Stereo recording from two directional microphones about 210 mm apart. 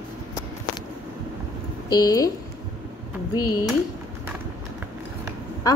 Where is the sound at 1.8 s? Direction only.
20° left (ahead or behind).